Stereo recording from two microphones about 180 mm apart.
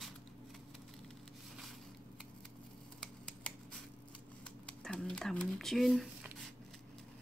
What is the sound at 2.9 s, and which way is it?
Scissors, 5° left (ahead or behind).